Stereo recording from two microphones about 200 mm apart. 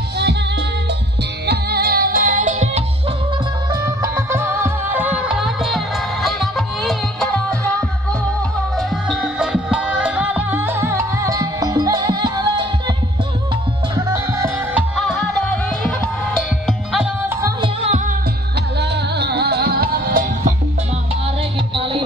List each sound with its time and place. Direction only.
1.4 s music: 55° right (ahead or behind); by 2.8 s 35° right (ahead or behind)
3.7 s music: 15° right (ahead or behind); by 7.5 s 5° left (ahead or behind)
8.7 s music: centre (ahead or behind); by 12.9 s 20° right (ahead or behind)
13.9 s music: 15° right (ahead or behind)
15.0 s music: centre (ahead or behind)
18.8 s music: 55° right (ahead or behind)
21.7 s music: 25° right (ahead or behind)